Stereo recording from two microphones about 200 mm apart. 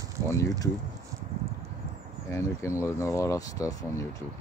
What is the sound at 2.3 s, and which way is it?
Speech, 15° left (ahead or behind).